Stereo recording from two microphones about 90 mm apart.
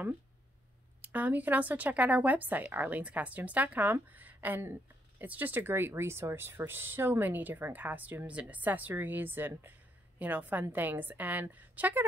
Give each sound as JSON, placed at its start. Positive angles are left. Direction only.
{"t": 1.0, "sound": "speech", "side_deg": -20}